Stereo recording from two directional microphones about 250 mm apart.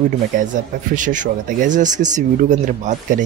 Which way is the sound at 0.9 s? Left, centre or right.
Right.